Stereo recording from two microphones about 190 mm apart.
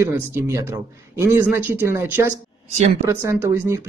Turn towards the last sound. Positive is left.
turn(degrees=-15)  # may be behind; listen again after turning